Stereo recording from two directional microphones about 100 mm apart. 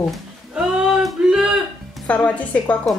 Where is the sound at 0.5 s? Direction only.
5° right (ahead or behind).